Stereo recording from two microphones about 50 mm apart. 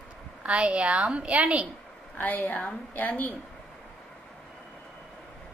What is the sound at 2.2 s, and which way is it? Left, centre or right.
A woman's voice, left.